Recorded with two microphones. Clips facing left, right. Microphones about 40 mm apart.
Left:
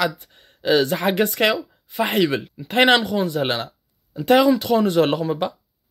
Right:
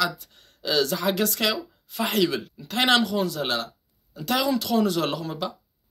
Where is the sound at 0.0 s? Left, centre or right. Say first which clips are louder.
Left 3 dB; left.